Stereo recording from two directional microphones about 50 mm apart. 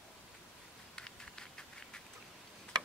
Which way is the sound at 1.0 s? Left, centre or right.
Centre.